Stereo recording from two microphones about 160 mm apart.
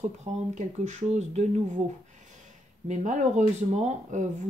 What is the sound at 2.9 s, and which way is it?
Speech, 45° right (ahead or behind).